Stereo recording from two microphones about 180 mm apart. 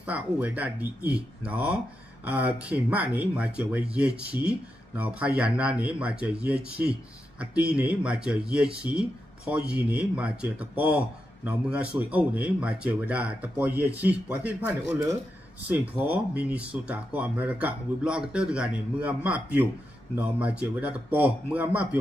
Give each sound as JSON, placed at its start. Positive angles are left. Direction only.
{"t": 0.0, "sound": "speech", "side_deg": -10}